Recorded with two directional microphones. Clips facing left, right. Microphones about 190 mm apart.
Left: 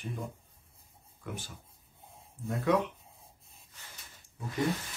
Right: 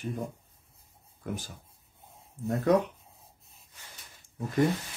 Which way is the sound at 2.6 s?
40° right (ahead or behind).